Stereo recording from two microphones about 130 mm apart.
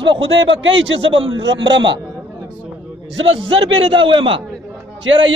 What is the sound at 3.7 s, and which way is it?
Speech, 40° right (ahead or behind).